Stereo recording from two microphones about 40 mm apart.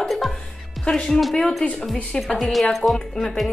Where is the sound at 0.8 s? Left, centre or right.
Centre.